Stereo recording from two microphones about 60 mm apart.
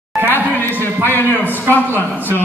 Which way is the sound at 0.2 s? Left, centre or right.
Left.